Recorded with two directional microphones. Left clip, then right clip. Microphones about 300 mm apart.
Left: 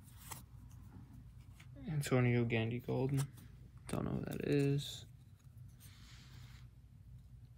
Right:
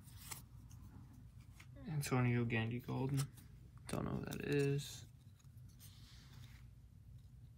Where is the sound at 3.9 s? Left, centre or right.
Centre.